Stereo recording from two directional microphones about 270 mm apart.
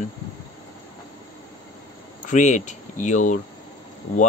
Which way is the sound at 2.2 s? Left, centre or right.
Left.